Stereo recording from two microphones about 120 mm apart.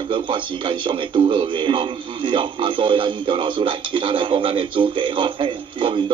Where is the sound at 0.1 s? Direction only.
45° right (ahead or behind).